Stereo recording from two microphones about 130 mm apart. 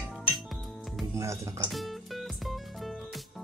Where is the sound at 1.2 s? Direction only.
25° right (ahead or behind).